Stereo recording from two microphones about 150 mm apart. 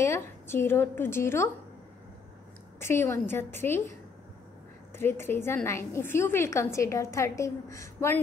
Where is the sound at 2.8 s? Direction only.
15° left (ahead or behind).